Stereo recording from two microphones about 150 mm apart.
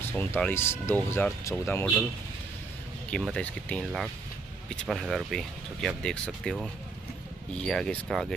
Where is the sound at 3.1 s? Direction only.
5° left (ahead or behind).